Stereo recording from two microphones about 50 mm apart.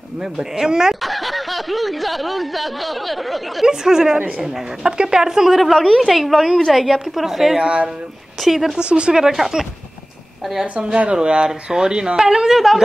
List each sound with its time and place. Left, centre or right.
0.2 s speech: centre
1.0 s speech: centre
3.6 s speech: centre
5.5 s speech: centre
7.6 s speech: centre
8.4 s speech: centre
8.7 s speech: centre
10.7 s speech: right; by 12.8 s centre